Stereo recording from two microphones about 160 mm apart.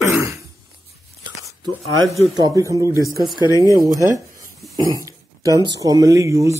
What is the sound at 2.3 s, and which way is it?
Speech, 25° right (ahead or behind).